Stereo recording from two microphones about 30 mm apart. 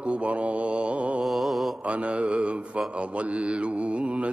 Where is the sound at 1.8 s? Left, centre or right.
Right.